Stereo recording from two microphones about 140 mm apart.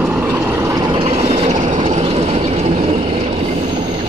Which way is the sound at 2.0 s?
45° right (ahead or behind).